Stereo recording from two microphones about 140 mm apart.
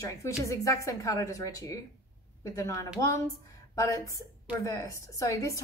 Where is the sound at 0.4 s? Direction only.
25° left (ahead or behind).